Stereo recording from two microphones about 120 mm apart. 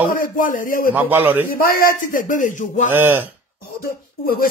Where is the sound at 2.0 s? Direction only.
90° left.